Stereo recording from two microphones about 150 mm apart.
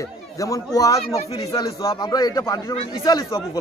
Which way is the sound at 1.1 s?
45° left (ahead or behind).